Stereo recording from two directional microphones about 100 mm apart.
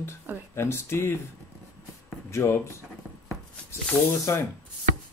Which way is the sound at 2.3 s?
30° left (ahead or behind).